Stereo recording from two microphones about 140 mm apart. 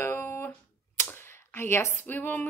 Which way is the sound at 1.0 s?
15° left (ahead or behind).